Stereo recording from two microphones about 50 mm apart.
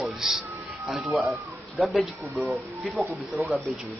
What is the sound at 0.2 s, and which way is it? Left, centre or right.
A man's voice, centre.